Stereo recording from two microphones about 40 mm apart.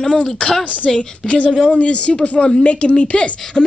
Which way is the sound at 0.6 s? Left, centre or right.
Left.